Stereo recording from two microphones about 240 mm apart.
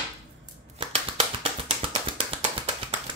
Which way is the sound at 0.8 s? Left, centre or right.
Right.